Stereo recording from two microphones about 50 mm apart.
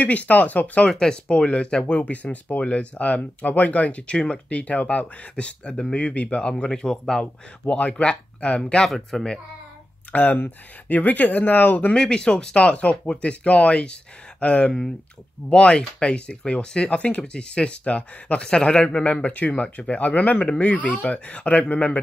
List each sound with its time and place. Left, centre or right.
0.0 s speech: left
0.8 s speech: centre
6.7 s speech: centre
7.6 s speech: left
8.8 s speech: centre
10.1 s speech: left
11.9 s speech: centre